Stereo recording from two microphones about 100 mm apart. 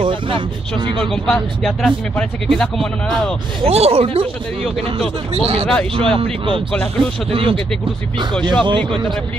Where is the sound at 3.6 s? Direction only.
85° right.